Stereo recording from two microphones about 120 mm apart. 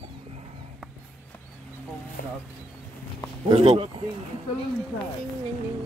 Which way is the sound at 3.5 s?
50° right (ahead or behind).